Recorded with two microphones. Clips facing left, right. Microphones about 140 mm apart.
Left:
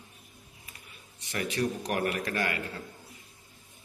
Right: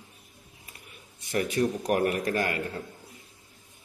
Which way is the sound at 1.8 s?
40° right (ahead or behind).